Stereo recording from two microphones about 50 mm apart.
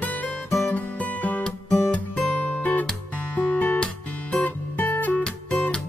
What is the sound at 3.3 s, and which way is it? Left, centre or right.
Music, left.